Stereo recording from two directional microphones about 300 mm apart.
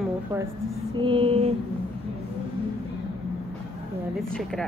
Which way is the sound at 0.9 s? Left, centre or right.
Centre.